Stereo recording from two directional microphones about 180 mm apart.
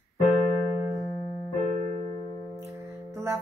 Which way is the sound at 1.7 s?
40° right (ahead or behind).